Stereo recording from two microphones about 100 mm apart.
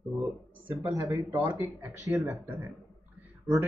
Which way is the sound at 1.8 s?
30° right (ahead or behind).